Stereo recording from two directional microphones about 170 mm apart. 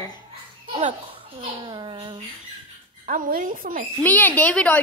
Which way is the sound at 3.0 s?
50° right (ahead or behind).